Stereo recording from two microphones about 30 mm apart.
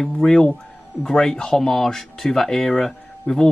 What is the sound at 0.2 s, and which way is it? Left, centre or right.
Speech, left.